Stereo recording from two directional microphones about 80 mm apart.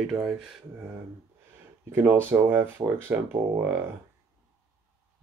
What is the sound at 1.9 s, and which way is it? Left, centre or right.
Speech, right.